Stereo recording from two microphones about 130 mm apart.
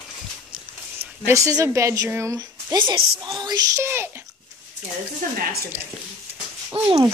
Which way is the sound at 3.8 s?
20° right (ahead or behind).